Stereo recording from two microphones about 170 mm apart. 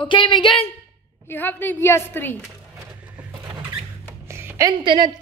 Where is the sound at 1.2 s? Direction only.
10° left (ahead or behind).